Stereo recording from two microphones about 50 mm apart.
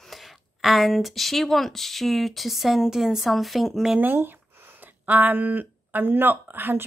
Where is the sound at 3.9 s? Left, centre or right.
Right.